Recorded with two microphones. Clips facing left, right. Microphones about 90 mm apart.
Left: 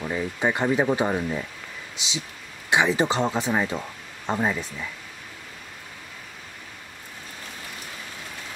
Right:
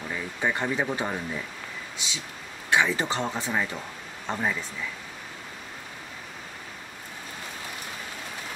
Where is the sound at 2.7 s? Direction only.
20° left (ahead or behind).